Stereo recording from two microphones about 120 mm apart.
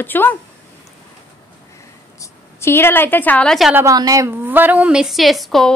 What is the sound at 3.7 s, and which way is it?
Speech, 30° right (ahead or behind).